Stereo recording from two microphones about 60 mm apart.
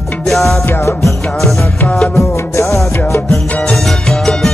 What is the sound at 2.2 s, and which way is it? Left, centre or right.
Music, left.